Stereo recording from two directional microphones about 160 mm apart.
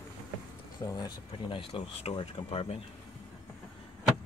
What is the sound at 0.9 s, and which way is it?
Speech, 25° left (ahead or behind).